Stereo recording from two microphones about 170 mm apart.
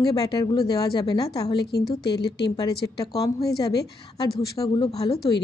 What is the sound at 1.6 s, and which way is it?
Speech, 70° left (ahead or behind).